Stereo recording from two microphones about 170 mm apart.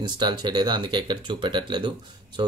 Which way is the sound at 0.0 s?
25° right (ahead or behind).